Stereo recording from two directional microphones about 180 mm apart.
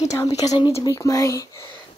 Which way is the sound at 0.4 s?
20° left (ahead or behind).